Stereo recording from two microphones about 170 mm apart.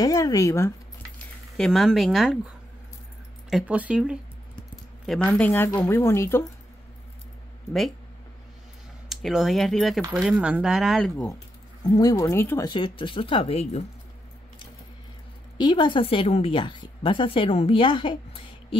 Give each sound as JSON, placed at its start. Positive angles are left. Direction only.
{"t": 0.0, "sound": "speech", "side_deg": 20}
{"t": 1.6, "sound": "speech", "side_deg": 0}
{"t": 3.4, "sound": "speech", "side_deg": -5}
{"t": 5.3, "sound": "speech", "side_deg": 10}
{"t": 9.1, "sound": "speech", "side_deg": 0}
{"t": 11.8, "sound": "speech", "side_deg": 20}
{"t": 12.7, "sound": "a woman's voice", "side_deg": 30}
{"t": 15.5, "sound": "a woman's voice", "side_deg": 25}